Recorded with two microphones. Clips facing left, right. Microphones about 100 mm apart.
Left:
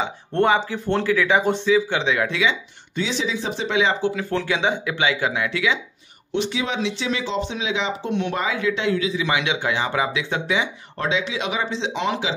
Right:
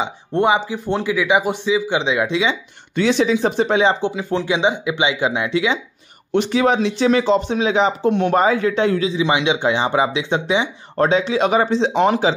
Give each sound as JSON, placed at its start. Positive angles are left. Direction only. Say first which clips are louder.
{"t": 0.0, "sound": "speech", "louder": "right 2 dB", "side_deg": -15}
{"t": 3.0, "sound": "speech", "louder": "right 9 dB", "side_deg": -55}
{"t": 4.0, "sound": "speech", "louder": "right 2 dB", "side_deg": -20}
{"t": 6.3, "sound": "speech", "louder": "right 8 dB", "side_deg": -50}
{"t": 9.1, "sound": "speech", "louder": "right 5 dB", "side_deg": -25}
{"t": 11.0, "sound": "speech", "louder": "right 8 dB", "side_deg": -40}